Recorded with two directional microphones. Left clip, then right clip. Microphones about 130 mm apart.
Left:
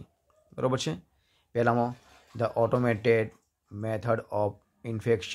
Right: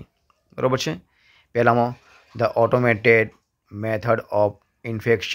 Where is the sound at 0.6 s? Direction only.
15° right (ahead or behind).